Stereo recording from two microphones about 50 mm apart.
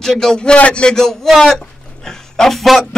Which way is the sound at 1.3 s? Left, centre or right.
Centre.